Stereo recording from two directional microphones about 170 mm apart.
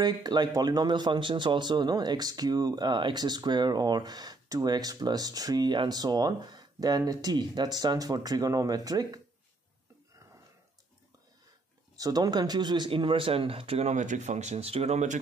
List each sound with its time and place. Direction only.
0.0 s speech: 25° right (ahead or behind)
12.0 s speech: 25° right (ahead or behind); by 15.1 s 40° right (ahead or behind)